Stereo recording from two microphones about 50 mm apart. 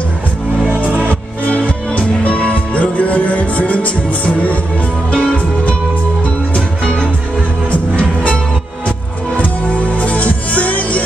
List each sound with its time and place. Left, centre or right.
0.8 s music: right
1.4 s music: left
6.8 s music: centre
7.7 s music: left
9.4 s music: left